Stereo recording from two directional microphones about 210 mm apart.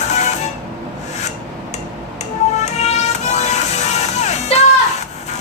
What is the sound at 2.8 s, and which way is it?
Music, 30° left (ahead or behind).